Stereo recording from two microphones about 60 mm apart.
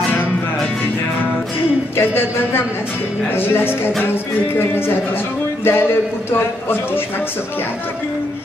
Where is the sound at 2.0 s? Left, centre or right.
Left.